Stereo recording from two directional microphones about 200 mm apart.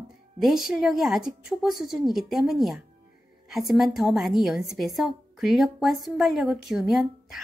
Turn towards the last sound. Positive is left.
turn(degrees=0)  # may be behind; listen again after turning